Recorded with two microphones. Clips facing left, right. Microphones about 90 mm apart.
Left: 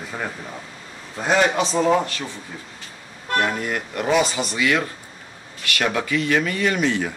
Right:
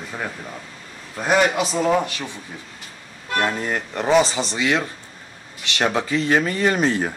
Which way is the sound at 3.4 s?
30° right (ahead or behind).